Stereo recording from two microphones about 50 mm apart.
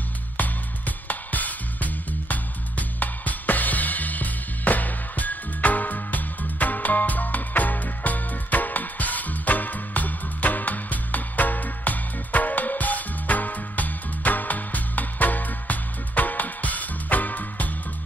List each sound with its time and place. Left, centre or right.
0.4 s music: left